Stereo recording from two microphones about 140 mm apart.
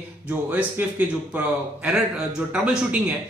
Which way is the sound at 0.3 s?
10° right (ahead or behind).